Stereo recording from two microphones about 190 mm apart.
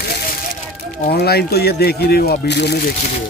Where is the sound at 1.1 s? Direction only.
55° left (ahead or behind).